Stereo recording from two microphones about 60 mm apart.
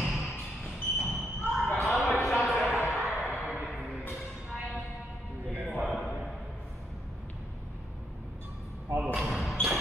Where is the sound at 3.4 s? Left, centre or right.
Right.